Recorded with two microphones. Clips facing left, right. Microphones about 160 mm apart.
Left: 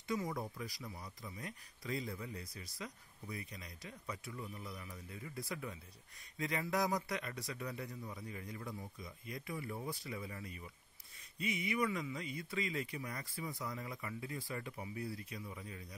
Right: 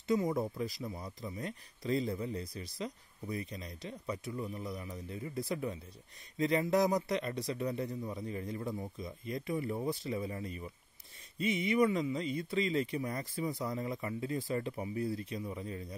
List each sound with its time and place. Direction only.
0.1 s speech: 25° right (ahead or behind)